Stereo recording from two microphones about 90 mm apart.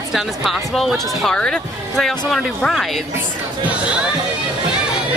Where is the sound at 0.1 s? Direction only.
Centre (ahead or behind).